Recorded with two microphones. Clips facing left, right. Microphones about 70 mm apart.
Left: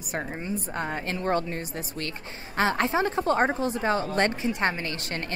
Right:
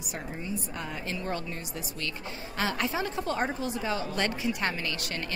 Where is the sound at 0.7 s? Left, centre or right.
Left.